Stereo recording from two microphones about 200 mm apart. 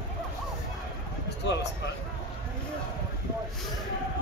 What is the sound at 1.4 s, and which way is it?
Speech, 60° left (ahead or behind).